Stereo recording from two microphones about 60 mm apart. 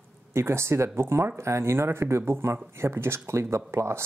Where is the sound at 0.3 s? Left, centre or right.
Right.